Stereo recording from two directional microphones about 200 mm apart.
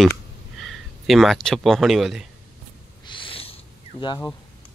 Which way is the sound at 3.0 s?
25° left (ahead or behind).